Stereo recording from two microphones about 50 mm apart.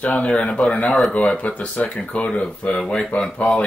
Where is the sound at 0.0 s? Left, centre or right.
Left.